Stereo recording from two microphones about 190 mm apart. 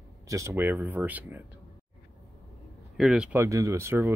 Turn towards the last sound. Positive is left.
turn(degrees=-15)  # may be behind; listen again after turning